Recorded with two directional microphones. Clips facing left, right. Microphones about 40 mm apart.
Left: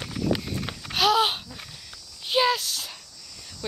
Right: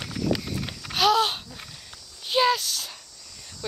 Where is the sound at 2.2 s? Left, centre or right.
Centre.